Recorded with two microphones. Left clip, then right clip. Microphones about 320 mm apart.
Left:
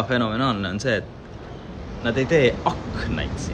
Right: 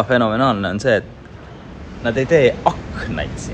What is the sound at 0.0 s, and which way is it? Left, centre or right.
A man's voice, centre.